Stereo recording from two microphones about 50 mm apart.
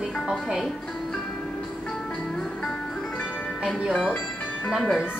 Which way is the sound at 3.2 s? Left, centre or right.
Left.